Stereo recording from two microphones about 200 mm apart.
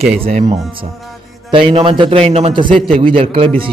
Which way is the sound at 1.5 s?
25° right (ahead or behind).